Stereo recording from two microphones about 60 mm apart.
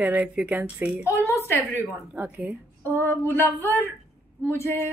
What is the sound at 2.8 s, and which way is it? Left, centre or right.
Speech, left.